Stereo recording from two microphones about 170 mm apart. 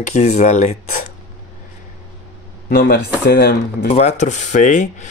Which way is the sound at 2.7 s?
65° left (ahead or behind).